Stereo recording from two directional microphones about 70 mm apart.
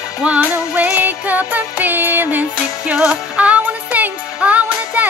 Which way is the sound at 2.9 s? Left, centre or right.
Centre.